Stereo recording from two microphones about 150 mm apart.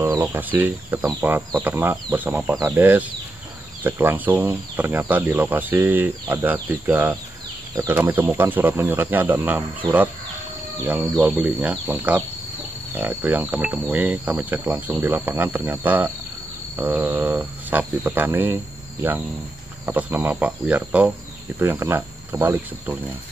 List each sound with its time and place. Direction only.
0.0 s speech: 15° right (ahead or behind)
19.9 s speech: 10° right (ahead or behind)